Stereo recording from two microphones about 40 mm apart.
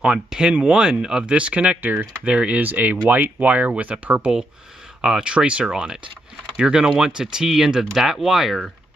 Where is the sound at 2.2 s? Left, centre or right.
Right.